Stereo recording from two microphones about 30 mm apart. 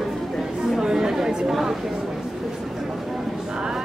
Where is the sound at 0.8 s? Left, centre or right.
Centre.